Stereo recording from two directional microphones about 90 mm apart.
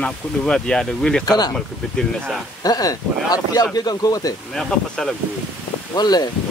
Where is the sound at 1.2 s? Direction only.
50° left (ahead or behind).